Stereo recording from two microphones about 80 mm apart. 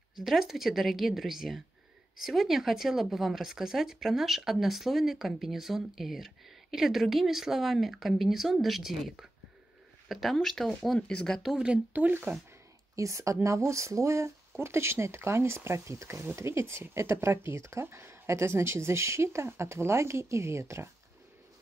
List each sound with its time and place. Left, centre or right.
0.2 s speech: centre
11.4 s speech: centre; by 12.4 s right
12.9 s speech: right